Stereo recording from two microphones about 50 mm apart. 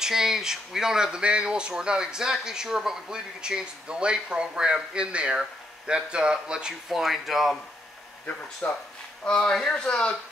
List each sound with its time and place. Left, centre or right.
0.0 s speech: centre
6.9 s speech: centre
8.6 s speech: left
9.5 s speech: centre
9.8 s speech: left